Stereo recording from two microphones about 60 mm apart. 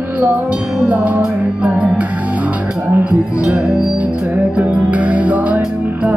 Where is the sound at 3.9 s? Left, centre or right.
Right.